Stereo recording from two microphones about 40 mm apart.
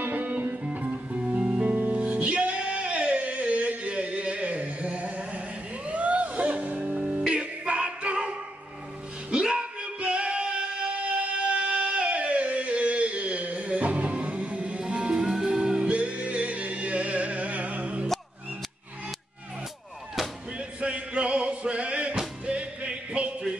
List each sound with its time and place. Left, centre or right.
0.0 s music: right
0.7 s music: right
9.3 s singing: right
15.9 s music: right
20.2 s music: centre
20.5 s music: right